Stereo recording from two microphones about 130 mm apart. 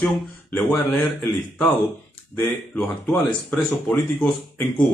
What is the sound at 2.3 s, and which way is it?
Speech, 10° left (ahead or behind).